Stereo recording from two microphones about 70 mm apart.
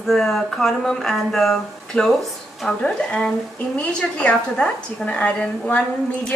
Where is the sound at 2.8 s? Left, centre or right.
Centre.